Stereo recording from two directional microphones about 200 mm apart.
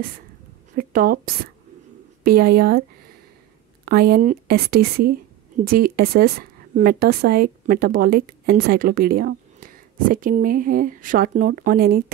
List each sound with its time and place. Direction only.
0.7 s a woman's voice: 45° right (ahead or behind)
3.8 s a woman's voice: 50° right (ahead or behind)